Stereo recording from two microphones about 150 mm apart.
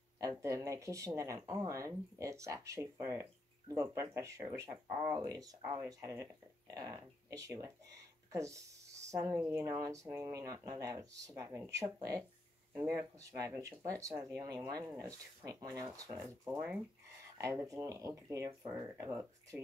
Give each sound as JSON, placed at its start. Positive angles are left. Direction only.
{"t": 0.2, "sound": "speech", "side_deg": -20}
{"t": 16.2, "sound": "speech", "side_deg": -10}
{"t": 17.4, "sound": "speech", "side_deg": -20}